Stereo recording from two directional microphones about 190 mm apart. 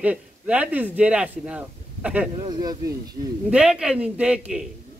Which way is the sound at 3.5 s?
5° right (ahead or behind).